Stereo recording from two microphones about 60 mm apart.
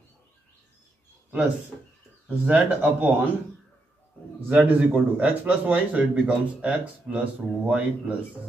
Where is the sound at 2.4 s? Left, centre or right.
Right.